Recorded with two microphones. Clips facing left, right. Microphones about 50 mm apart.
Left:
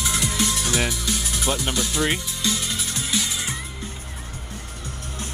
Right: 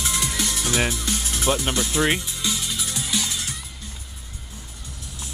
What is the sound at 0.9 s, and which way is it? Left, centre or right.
Music, right.